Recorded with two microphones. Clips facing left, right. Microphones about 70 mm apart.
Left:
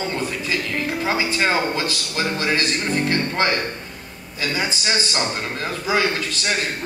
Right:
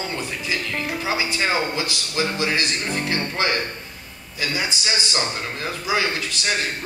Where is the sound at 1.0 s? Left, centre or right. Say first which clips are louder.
Left 3 dB; left.